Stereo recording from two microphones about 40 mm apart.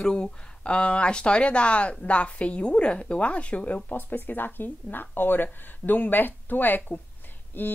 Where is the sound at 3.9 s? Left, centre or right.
Left.